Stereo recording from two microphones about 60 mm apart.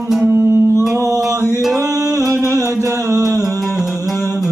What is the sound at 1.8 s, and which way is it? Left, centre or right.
Music, right.